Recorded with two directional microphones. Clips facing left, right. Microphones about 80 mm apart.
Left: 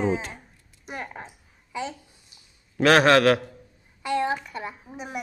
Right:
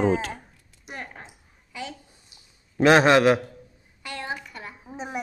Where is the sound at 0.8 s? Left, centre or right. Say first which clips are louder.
Left 3 dB; centre.